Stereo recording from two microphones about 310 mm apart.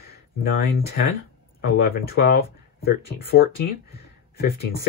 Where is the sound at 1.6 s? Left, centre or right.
Left.